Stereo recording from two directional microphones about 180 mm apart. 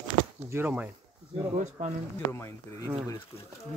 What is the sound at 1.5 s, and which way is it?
Speech, 40° right (ahead or behind).